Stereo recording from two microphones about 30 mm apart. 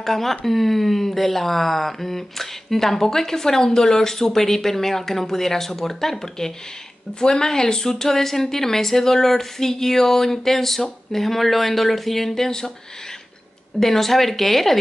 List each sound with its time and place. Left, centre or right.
0.0 s speech: centre
12.4 s speech: centre
13.7 s speech: centre